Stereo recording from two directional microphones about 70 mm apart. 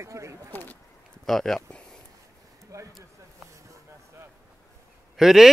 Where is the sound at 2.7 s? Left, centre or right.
Right.